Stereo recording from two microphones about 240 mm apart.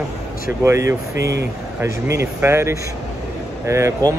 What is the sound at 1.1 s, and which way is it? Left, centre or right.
Speech, right.